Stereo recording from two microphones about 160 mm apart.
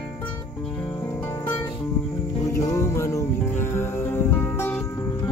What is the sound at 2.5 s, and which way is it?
Music, 20° left (ahead or behind).